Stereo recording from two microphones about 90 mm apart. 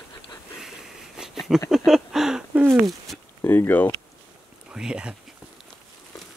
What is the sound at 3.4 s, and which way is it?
Speech, 25° left (ahead or behind).